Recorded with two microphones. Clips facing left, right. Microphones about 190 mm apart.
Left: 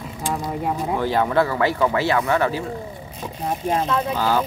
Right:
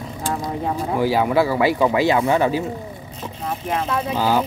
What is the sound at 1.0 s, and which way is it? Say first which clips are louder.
Speech: right 3 dB; 10° right (ahead or behind).